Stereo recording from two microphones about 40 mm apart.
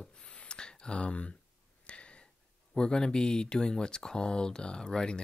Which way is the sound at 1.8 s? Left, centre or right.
Left.